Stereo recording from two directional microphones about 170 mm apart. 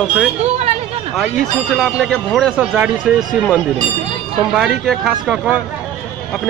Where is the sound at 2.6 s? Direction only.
10° right (ahead or behind).